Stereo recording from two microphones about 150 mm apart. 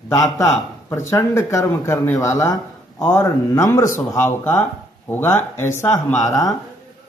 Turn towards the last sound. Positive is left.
turn(degrees=25)  # may be behind; listen again after turning